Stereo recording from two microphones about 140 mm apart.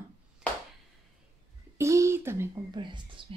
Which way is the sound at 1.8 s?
20° right (ahead or behind).